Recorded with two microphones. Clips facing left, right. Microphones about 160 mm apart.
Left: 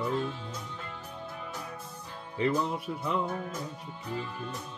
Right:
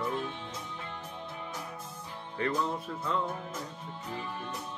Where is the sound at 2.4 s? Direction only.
15° left (ahead or behind).